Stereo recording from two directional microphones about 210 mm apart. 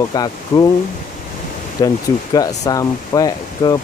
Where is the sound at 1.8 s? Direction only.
20° left (ahead or behind).